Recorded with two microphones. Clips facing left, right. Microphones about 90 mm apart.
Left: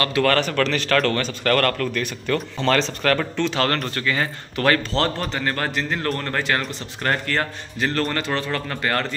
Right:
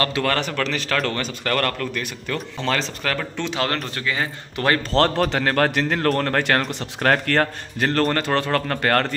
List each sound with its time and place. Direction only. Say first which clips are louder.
0.0 s speech: left 2 dB; 25° right (ahead or behind)
4.9 s a man's voice: right 4 dB; 60° right (ahead or behind)